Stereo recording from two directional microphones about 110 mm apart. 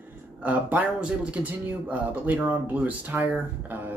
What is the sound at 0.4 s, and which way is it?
Speech, 15° right (ahead or behind).